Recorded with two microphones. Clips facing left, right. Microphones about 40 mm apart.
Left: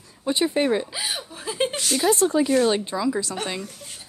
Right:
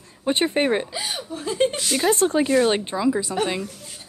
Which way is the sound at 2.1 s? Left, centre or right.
Right.